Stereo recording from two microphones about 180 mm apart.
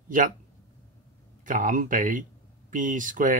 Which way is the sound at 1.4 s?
45° right (ahead or behind).